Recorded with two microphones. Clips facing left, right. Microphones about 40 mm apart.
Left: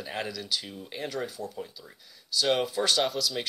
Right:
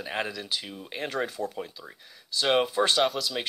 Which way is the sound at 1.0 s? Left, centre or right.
Right.